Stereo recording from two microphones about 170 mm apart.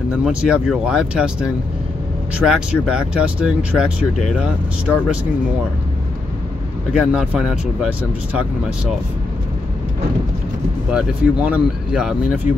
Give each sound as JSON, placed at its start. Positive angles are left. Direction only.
{"t": 0.2, "sound": "speech", "side_deg": -5}
{"t": 6.9, "sound": "speech", "side_deg": -5}
{"t": 10.9, "sound": "speech", "side_deg": -5}